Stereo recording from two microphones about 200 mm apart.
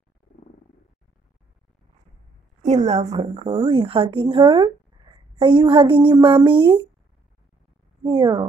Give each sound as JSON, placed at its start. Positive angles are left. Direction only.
{"t": 2.6, "sound": "a woman's voice", "side_deg": -35}
{"t": 8.0, "sound": "a woman's voice", "side_deg": -25}